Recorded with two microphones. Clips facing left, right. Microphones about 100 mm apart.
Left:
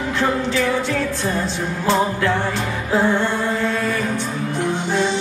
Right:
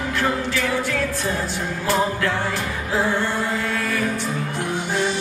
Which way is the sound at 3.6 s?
20° left (ahead or behind).